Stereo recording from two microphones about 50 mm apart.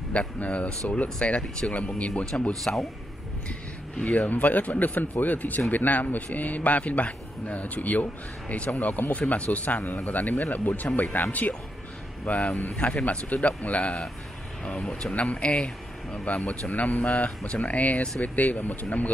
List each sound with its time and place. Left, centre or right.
0.1 s a man's voice: left
2.6 s a man's voice: centre
4.0 s a man's voice: left
12.3 s a man's voice: left